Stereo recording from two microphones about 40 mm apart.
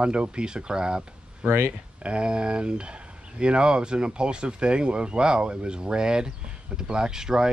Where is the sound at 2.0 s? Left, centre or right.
Right.